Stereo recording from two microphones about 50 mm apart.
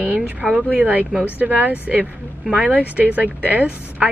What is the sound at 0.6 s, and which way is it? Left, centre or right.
A woman's voice, right.